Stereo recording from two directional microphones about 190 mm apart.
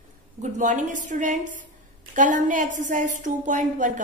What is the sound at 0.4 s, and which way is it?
A woman's voice, 40° right (ahead or behind).